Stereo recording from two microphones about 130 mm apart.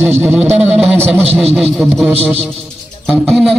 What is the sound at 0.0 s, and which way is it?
A man's voice, 15° right (ahead or behind).